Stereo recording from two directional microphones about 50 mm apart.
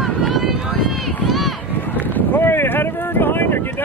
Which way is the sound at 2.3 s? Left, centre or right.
Left.